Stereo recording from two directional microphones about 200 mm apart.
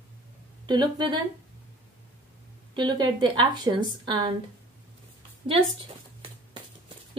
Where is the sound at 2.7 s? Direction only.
20° right (ahead or behind).